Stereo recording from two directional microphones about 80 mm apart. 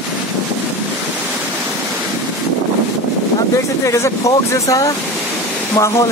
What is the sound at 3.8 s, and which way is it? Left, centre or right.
Speech, left.